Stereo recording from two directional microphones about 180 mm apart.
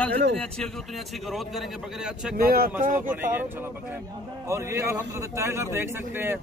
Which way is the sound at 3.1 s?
10° right (ahead or behind).